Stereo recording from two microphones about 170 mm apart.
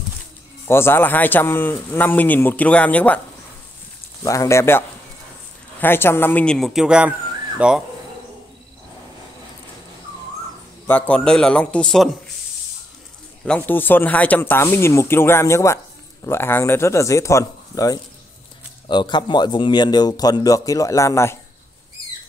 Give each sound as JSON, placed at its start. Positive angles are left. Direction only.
{"t": 0.7, "sound": "a man's voice", "side_deg": 15}
{"t": 4.2, "sound": "a man's voice", "side_deg": 20}
{"t": 10.9, "sound": "a man's voice", "side_deg": 10}
{"t": 13.5, "sound": "a man's voice", "side_deg": 10}